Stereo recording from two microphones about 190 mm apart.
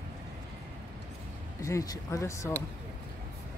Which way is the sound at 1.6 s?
15° left (ahead or behind).